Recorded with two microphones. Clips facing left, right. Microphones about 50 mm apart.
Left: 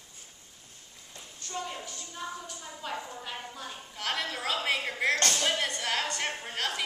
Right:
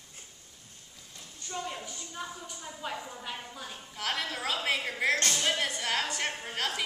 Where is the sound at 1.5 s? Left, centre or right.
Centre.